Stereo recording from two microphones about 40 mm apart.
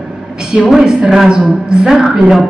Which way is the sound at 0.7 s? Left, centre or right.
Centre.